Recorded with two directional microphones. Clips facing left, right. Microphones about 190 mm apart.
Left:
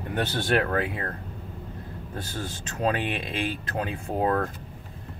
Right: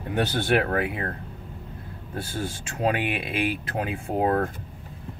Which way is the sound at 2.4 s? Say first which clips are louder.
Right 2 dB; 10° right (ahead or behind).